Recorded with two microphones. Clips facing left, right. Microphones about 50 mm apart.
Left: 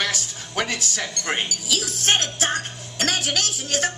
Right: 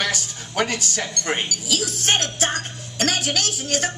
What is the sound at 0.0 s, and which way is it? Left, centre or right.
A woman's voice, centre.